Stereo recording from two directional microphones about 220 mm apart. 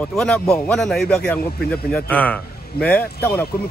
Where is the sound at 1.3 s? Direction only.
45° left (ahead or behind).